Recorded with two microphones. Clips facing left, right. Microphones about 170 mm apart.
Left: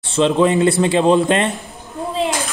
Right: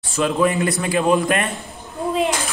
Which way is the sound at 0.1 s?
25° left (ahead or behind).